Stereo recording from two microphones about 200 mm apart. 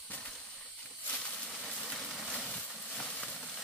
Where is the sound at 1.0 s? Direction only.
5° left (ahead or behind).